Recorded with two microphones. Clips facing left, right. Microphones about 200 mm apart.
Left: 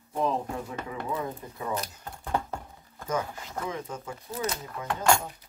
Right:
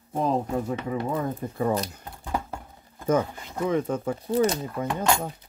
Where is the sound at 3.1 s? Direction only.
60° right (ahead or behind).